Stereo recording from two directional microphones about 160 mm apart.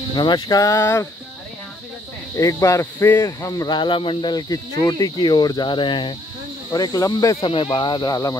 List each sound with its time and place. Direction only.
0.1 s speech: 30° left (ahead or behind)
2.3 s speech: 20° left (ahead or behind)
7.3 s speech: 35° left (ahead or behind)